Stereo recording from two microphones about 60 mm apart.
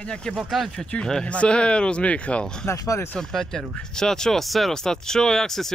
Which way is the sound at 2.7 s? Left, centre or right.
Left.